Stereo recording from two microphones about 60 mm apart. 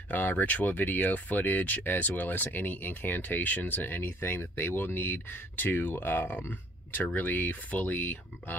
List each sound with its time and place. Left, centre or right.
0.1 s speech: left